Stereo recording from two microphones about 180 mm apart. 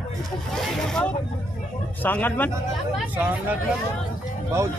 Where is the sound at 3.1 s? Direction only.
10° right (ahead or behind).